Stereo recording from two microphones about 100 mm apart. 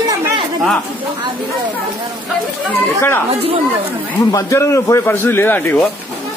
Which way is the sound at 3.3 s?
80° right.